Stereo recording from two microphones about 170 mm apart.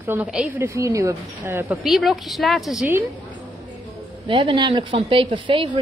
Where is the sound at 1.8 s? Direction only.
Centre (ahead or behind).